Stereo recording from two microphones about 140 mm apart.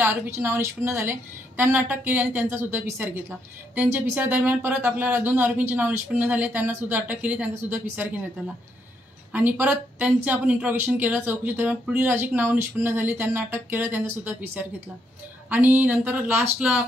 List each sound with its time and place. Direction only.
0.0 s a woman's voice: 15° right (ahead or behind)
9.3 s a woman's voice: 15° right (ahead or behind)